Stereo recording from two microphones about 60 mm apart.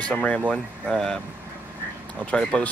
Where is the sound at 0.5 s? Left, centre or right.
Centre.